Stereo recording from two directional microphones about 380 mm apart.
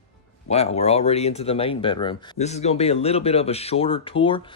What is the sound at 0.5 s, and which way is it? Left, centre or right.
Speech, centre.